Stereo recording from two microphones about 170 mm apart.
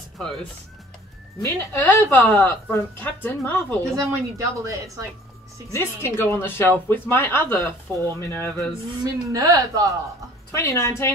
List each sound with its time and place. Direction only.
1.8 s a woman's voice: 10° left (ahead or behind)
3.9 s speech: 20° right (ahead or behind)
5.7 s a woman's voice: 15° left (ahead or behind)
9.0 s speech: 20° right (ahead or behind)
10.5 s a woman's voice: 15° left (ahead or behind)